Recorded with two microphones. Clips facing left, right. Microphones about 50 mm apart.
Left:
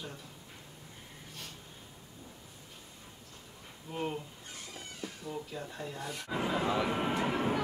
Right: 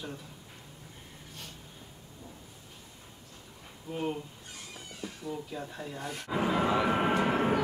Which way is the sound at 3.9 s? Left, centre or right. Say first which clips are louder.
Right 2 dB; centre.